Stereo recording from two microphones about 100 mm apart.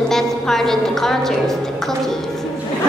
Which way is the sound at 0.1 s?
5° left (ahead or behind).